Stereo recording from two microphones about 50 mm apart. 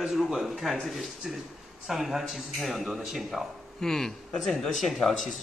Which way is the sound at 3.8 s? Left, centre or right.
Centre.